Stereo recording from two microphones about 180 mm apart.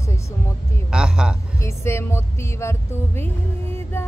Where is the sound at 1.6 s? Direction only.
15° left (ahead or behind).